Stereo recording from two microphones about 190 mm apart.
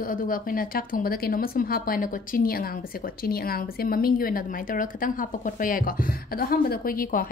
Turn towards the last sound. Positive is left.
turn(degrees=50)  # may be behind; listen again after turning